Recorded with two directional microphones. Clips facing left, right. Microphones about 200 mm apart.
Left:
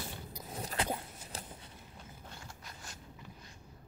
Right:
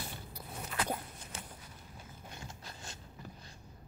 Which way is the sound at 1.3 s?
35° left (ahead or behind).